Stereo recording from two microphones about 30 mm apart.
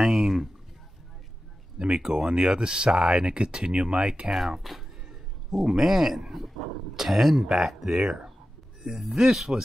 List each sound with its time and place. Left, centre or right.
0.0 s speech: centre
1.8 s speech: right
4.6 s speech: centre
5.6 s speech: centre
6.6 s speech: centre
7.0 s speech: centre
8.8 s speech: centre
9.1 s speech: right